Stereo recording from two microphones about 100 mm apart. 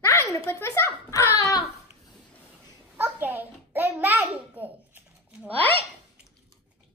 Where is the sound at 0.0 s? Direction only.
30° left (ahead or behind).